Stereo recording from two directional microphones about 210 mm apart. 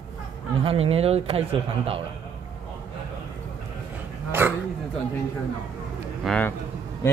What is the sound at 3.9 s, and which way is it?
Dog, 10° right (ahead or behind).